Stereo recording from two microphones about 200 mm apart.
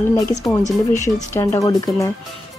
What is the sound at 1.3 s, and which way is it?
Speech, 15° left (ahead or behind).